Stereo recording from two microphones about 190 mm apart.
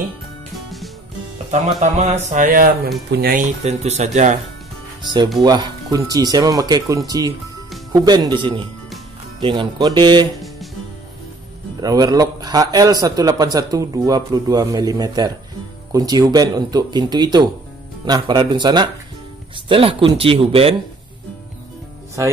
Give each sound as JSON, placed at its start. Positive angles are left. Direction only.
{"t": 1.8, "sound": "speech", "side_deg": -40}
{"t": 2.2, "sound": "a sound", "side_deg": -45}
{"t": 3.6, "sound": "speech", "side_deg": -35}
{"t": 5.0, "sound": "a man's voice", "side_deg": -25}
{"t": 11.8, "sound": "a man's voice", "side_deg": -20}